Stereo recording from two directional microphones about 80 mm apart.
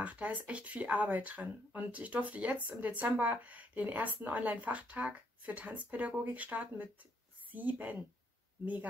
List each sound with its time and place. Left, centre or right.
0.0 s speech: centre